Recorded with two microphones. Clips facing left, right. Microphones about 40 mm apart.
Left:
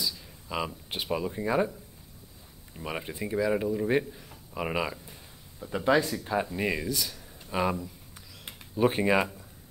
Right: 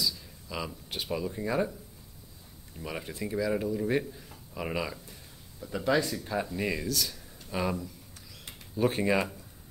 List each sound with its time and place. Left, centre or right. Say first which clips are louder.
0.5 s speech: left 4 dB; left
2.7 s speech: left 2 dB; centre
4.1 s a sound: even; centre
4.6 s speech: left 3 dB; centre
6.0 s speech: left 2 dB; centre
6.5 s speech: left 2 dB; centre